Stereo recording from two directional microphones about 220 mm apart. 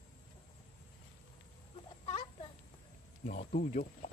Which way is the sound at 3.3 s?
35° left (ahead or behind).